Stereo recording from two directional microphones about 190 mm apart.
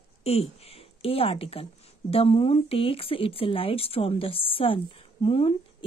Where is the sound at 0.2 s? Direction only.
30° left (ahead or behind).